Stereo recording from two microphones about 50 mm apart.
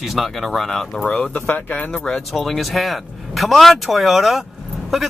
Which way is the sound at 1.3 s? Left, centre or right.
Left.